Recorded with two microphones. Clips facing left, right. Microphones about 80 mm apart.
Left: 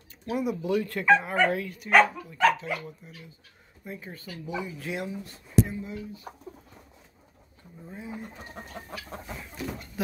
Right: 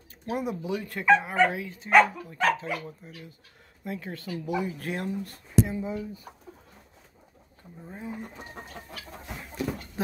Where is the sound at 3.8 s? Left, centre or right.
Right.